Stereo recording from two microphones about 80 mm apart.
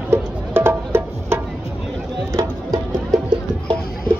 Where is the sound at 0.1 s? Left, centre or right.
Right.